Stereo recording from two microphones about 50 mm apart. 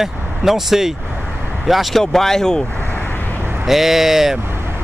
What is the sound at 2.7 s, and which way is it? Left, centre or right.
Vehicle, left.